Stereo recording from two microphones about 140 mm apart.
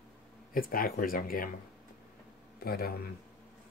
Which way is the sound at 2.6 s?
90° left.